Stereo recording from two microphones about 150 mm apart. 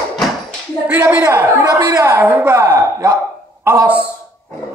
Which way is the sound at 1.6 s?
25° right (ahead or behind).